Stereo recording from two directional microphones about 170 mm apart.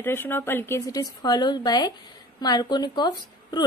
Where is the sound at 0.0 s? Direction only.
10° left (ahead or behind).